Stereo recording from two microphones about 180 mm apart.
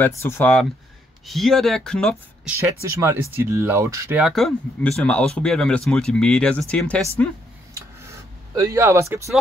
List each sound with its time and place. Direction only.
0.0 s speech: 10° left (ahead or behind)
2.6 s speech: 15° right (ahead or behind)
4.2 s speech: centre (ahead or behind)
8.0 s a sound: 15° right (ahead or behind)